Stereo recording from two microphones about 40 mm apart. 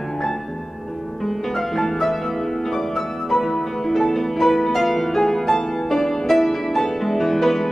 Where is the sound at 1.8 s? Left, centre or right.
Centre.